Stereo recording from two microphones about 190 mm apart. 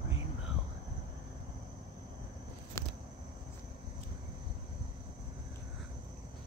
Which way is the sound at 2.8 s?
15° left (ahead or behind).